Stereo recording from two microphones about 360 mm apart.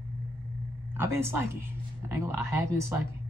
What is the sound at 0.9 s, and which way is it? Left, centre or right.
Speech, centre.